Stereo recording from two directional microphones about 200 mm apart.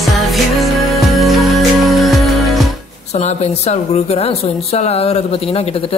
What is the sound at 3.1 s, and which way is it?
Speech, 35° left (ahead or behind).